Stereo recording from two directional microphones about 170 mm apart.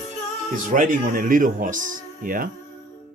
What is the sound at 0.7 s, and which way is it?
Speech, 55° right (ahead or behind).